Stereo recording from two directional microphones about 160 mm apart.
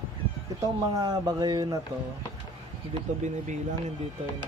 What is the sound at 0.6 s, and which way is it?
Speech, 25° right (ahead or behind).